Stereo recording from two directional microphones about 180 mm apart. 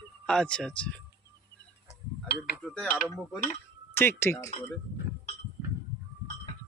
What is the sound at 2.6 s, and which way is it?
Speech, centre (ahead or behind).